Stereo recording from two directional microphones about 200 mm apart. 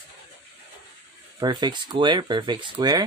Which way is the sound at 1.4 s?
20° right (ahead or behind).